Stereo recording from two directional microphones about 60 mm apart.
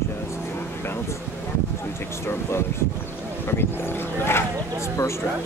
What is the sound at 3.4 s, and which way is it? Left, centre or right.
Speech, left.